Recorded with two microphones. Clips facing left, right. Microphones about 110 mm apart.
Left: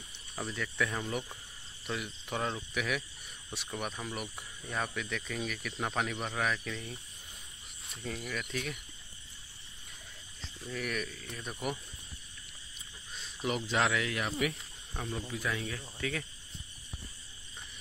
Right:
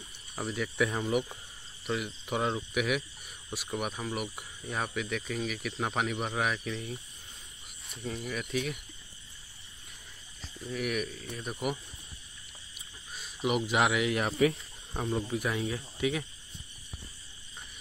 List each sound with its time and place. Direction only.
0.4 s speech: 10° right (ahead or behind)
8.5 s speech: 5° right (ahead or behind)
10.7 s speech: 10° right (ahead or behind)
12.7 s a sound: 5° right (ahead or behind)
14.1 s speech: 30° right (ahead or behind)
16.0 s speech: 15° right (ahead or behind)